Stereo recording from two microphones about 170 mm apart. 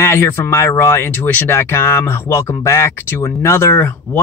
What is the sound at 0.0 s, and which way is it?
Speech, 15° left (ahead or behind).